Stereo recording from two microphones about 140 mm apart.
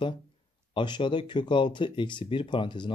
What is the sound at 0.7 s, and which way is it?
Speech, 35° left (ahead or behind).